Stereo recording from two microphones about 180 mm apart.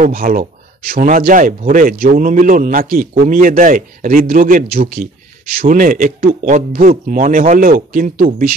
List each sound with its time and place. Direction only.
0.0 s speech: 50° right (ahead or behind)